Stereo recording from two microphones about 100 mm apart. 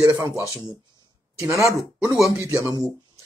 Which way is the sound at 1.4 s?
30° right (ahead or behind).